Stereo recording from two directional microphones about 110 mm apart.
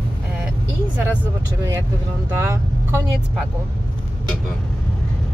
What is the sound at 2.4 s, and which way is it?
Speech, 25° right (ahead or behind).